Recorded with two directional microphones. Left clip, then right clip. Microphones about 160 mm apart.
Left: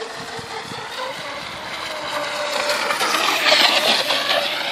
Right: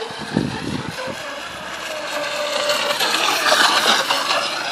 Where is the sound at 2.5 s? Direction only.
25° right (ahead or behind).